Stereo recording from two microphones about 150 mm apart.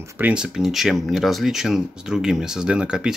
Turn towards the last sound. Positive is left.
turn(degrees=-5)  # may be behind; listen again after turning